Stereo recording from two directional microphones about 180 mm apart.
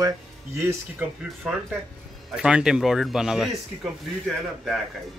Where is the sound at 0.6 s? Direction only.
15° right (ahead or behind).